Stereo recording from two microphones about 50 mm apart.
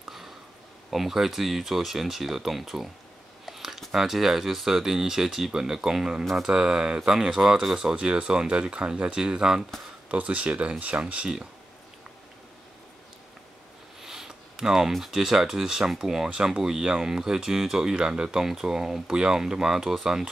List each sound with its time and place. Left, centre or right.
0.8 s speech: centre
7.9 s speech: right
10.0 s speech: right
14.0 s speech: centre